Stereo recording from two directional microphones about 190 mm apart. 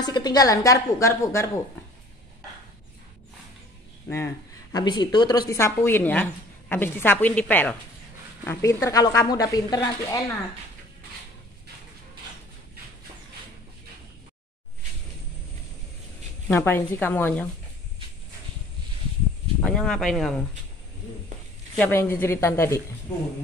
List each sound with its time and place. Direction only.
0.0 s speech: 20° left (ahead or behind)
4.7 s speech: 20° left (ahead or behind)
16.4 s speech: 10° left (ahead or behind)
19.6 s speech: 5° left (ahead or behind)
21.7 s speech: 10° left (ahead or behind)